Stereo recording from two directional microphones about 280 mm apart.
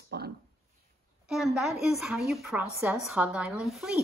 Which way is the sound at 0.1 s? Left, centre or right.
Right.